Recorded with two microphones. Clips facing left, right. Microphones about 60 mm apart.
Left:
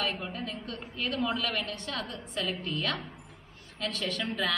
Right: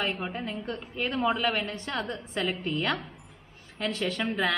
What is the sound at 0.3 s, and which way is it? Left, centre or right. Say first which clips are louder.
A woman's voice: right 4 dB; right.